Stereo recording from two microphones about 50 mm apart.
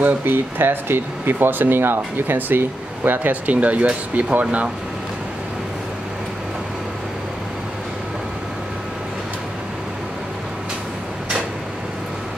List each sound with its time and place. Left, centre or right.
0.0 s speech: right